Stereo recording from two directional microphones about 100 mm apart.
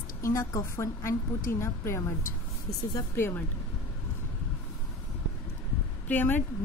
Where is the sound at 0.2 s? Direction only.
30° left (ahead or behind).